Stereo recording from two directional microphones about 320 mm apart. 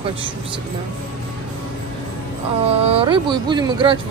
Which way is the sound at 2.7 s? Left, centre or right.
Centre.